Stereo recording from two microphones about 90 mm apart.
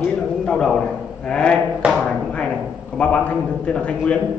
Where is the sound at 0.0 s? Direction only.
10° left (ahead or behind).